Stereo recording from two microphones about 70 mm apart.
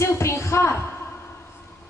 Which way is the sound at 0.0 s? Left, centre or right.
Left.